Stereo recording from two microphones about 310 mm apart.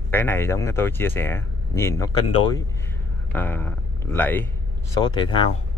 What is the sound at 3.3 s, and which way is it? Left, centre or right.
A man's voice, centre.